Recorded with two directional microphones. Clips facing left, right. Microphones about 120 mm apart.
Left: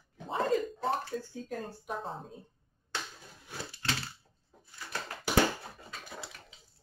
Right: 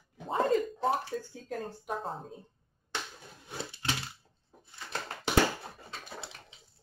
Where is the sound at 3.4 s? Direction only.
25° right (ahead or behind).